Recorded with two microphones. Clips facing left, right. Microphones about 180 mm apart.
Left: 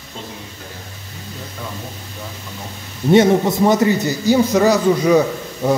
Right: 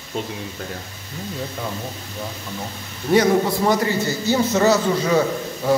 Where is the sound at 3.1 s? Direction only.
20° left (ahead or behind).